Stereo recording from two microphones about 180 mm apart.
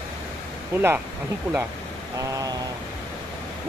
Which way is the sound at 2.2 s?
20° right (ahead or behind).